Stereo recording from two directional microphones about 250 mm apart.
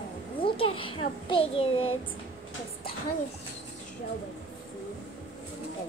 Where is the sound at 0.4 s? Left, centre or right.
Left.